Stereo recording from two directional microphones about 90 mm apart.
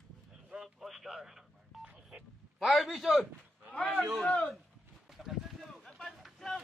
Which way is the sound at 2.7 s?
Centre (ahead or behind).